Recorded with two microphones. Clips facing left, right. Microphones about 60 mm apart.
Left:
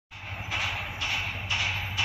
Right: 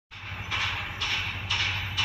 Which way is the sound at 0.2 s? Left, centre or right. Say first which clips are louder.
Right 1 dB; centre.